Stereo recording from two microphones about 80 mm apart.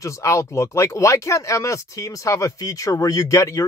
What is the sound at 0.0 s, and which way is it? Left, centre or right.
Speech, left.